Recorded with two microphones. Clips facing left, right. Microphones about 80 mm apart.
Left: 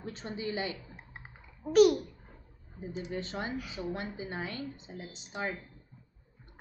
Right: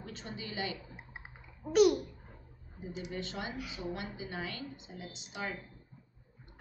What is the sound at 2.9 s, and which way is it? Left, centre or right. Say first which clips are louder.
Speech: left 3 dB; left.